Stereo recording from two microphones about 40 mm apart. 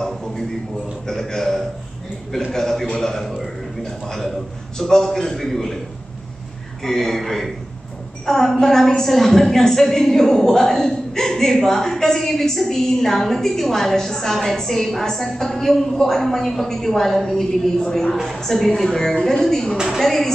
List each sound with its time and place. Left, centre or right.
0.0 s a man's voice: centre
6.8 s a woman's voice: centre
17.7 s a woman's voice: left
18.2 s a woman's voice: centre